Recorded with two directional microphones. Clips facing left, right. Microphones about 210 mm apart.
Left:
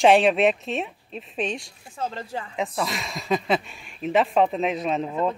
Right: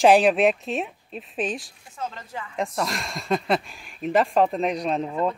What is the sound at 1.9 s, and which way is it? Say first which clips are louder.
Speech: left 3 dB; 30° left (ahead or behind).